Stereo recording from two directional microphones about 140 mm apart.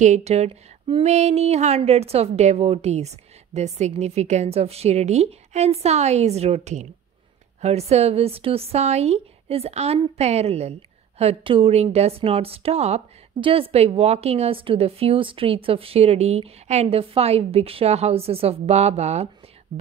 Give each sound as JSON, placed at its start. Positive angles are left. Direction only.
{"t": 0.0, "sound": "a woman's voice", "side_deg": -55}